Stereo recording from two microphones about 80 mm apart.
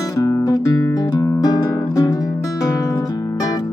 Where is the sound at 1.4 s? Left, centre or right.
Left.